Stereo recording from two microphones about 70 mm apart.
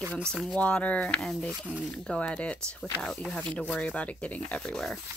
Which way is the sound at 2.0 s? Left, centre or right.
Centre.